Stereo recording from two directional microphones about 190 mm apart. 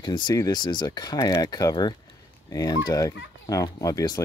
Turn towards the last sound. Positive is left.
turn(degrees=20)  # may be behind; listen again after turning